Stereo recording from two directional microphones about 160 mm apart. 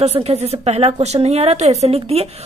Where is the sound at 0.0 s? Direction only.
40° right (ahead or behind).